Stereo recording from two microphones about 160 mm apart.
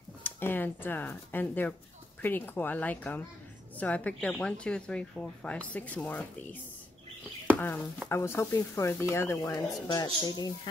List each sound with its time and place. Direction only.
0.2 s speech: 15° left (ahead or behind)